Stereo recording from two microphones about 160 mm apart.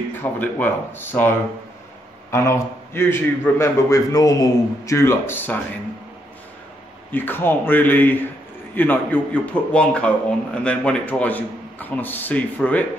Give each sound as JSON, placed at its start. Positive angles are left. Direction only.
{"t": 0.1, "sound": "a man's voice", "side_deg": 10}
{"t": 2.3, "sound": "a man's voice", "side_deg": 15}
{"t": 7.1, "sound": "a man's voice", "side_deg": 10}